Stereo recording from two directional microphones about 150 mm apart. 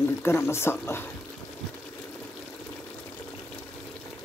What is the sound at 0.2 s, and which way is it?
Speech, 15° left (ahead or behind).